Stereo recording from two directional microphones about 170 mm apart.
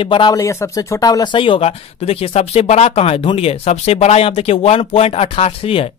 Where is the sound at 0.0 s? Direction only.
30° left (ahead or behind).